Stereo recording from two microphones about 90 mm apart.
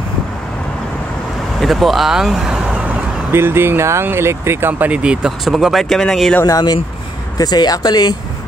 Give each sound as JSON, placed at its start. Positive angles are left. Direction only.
{"t": 1.6, "sound": "speech", "side_deg": 0}
{"t": 2.9, "sound": "speech", "side_deg": -25}
{"t": 7.3, "sound": "speech", "side_deg": 50}